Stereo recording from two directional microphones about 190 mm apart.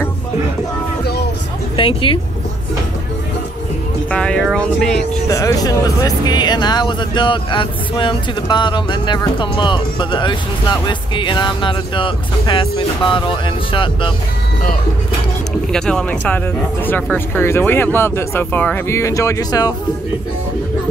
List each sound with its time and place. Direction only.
1.8 s speech: 30° left (ahead or behind)
4.1 s speech: 5° left (ahead or behind)
5.3 s speech: 20° left (ahead or behind)
15.7 s speech: 5° left (ahead or behind)